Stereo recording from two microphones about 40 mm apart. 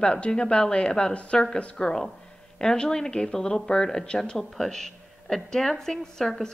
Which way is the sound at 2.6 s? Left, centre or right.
Centre.